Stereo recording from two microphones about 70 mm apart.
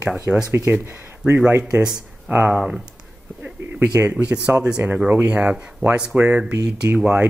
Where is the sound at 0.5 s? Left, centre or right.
Right.